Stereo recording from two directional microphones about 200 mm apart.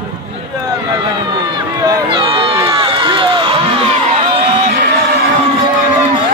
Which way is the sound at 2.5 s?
25° right (ahead or behind).